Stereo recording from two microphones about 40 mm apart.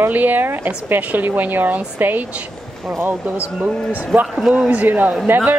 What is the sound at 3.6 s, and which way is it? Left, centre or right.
Speech, right.